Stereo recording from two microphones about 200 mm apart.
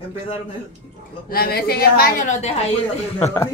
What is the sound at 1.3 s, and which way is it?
A woman's voice, 50° left (ahead or behind).